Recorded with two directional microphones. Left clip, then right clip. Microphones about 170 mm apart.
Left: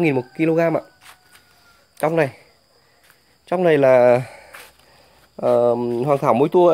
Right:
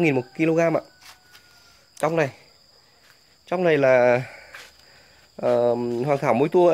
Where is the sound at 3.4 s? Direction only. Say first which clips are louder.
Left 4 dB; 20° left (ahead or behind).